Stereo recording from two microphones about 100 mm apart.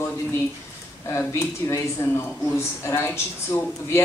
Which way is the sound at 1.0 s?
30° left (ahead or behind).